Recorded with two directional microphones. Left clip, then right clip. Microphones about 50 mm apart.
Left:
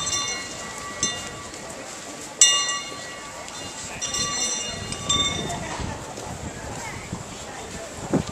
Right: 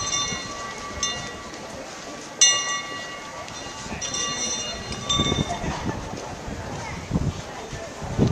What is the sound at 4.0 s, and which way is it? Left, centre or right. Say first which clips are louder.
Train: left 1 dB; centre.